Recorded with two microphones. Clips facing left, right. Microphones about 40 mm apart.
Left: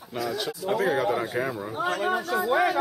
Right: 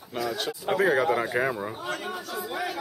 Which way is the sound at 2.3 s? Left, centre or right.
Left.